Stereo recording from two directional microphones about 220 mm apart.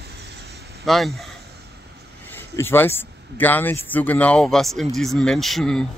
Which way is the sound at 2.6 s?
10° left (ahead or behind).